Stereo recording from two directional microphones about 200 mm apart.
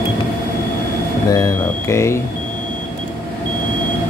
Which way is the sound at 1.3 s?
15° left (ahead or behind).